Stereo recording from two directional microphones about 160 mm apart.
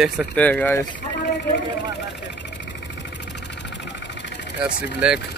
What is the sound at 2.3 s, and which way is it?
Vehicle, 90° left.